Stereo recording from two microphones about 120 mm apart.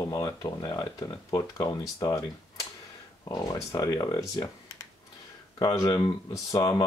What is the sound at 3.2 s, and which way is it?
Speech, 35° left (ahead or behind).